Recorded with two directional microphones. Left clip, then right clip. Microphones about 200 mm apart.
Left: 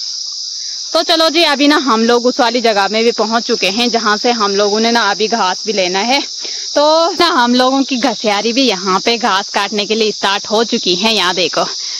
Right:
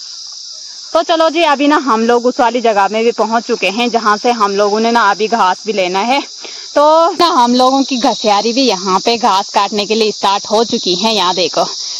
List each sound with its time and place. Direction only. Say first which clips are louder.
0.9 s speech: even; 25° left (ahead or behind)